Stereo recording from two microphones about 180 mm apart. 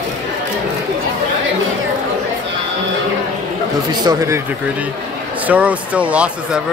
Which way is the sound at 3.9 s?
20° right (ahead or behind).